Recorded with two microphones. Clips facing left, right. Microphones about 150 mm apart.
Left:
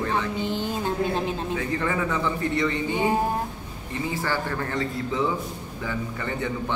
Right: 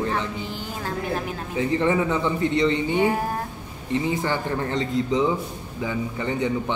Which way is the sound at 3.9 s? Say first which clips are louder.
Right 4 dB; 20° right (ahead or behind).